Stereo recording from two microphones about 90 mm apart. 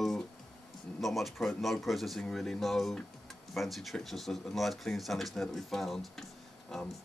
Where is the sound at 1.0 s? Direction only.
Centre (ahead or behind).